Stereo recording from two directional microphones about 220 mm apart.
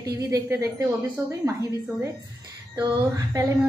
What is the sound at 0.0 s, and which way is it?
Speech, 15° right (ahead or behind).